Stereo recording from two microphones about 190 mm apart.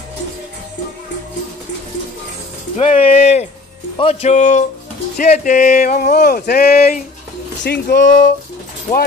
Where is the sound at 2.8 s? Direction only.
35° left (ahead or behind).